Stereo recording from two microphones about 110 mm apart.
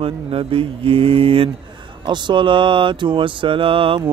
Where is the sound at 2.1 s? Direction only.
45° right (ahead or behind).